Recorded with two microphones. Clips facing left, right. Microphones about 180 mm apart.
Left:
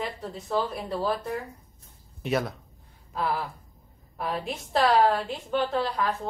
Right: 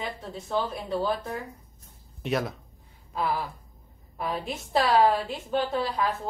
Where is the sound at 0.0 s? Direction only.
Centre (ahead or behind).